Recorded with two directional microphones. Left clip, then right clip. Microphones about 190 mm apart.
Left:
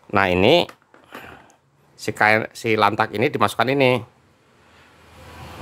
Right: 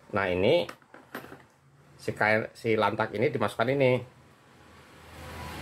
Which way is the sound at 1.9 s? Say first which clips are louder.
Left 8 dB; 35° left (ahead or behind).